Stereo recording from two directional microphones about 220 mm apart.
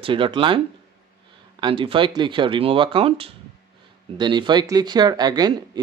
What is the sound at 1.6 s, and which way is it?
Speech, 25° right (ahead or behind).